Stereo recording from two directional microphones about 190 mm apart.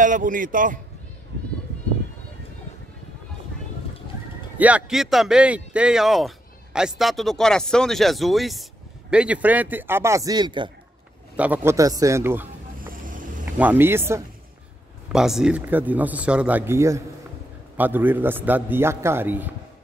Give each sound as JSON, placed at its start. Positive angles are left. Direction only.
{"t": 0.0, "sound": "a man's voice", "side_deg": -45}
{"t": 4.6, "sound": "speech", "side_deg": -5}
{"t": 11.3, "sound": "speech", "side_deg": -10}
{"t": 12.8, "sound": "vehicle", "side_deg": -45}
{"t": 13.5, "sound": "speech", "side_deg": -10}
{"t": 15.1, "sound": "speech", "side_deg": 0}